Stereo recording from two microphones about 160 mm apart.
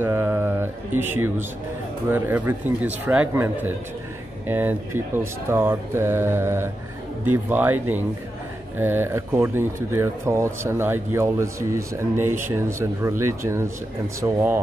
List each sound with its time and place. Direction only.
0.0 s mantra: 15° right (ahead or behind)
2.0 s speech: 15° right (ahead or behind)